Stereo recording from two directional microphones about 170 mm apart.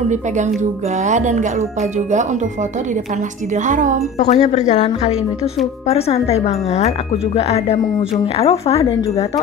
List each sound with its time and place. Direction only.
0.6 s speech: 45° right (ahead or behind)
3.5 s speech: 50° right (ahead or behind)
4.2 s speech: 40° left (ahead or behind)